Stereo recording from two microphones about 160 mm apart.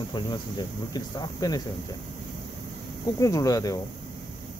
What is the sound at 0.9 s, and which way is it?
Speech, 25° left (ahead or behind).